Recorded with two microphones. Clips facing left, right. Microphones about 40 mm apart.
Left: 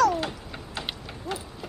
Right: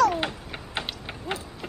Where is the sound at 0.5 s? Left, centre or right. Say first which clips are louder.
Right 2 dB; right.